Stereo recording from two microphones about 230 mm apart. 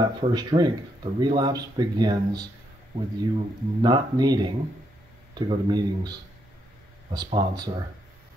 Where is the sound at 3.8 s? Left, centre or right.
Centre.